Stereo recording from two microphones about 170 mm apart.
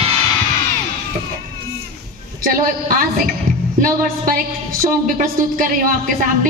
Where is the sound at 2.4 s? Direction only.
55° right (ahead or behind).